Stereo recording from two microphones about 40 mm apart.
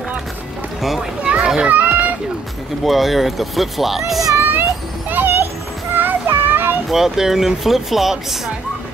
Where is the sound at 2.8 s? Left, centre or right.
Centre.